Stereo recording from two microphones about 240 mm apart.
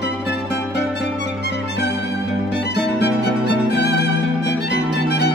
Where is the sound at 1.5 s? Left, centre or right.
Left.